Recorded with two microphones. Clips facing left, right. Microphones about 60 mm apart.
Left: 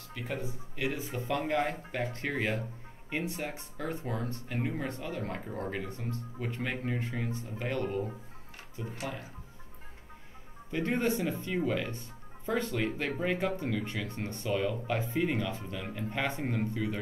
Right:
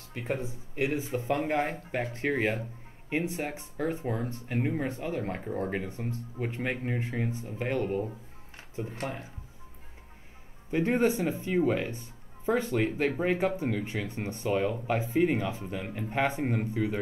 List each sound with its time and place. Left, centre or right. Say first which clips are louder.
0.1 s speech: right 4 dB; right
5.4 s speech: right 5 dB; centre
5.7 s speech: right 3 dB; right
8.9 s speech: right 1 dB; right
10.7 s speech: right 4 dB; right